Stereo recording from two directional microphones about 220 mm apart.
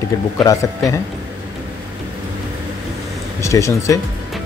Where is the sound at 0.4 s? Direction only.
15° left (ahead or behind).